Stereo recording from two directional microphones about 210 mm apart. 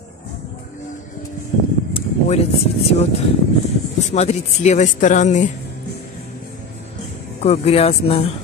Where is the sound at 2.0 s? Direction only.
30° left (ahead or behind).